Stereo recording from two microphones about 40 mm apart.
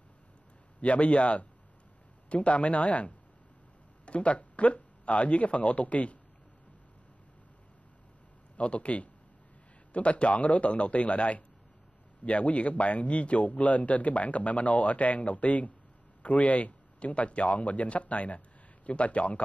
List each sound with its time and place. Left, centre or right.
0.7 s a man's voice: left
8.5 s a man's voice: left